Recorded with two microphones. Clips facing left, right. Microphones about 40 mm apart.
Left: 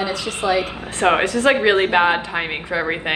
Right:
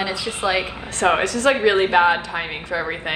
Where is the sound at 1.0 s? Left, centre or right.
Left.